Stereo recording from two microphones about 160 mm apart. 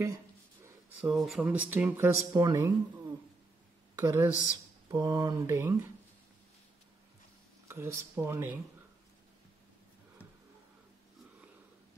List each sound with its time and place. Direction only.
1.0 s speech: centre (ahead or behind); by 4.3 s 15° right (ahead or behind)
4.8 s mantra: 20° right (ahead or behind)
7.6 s speech: 15° right (ahead or behind)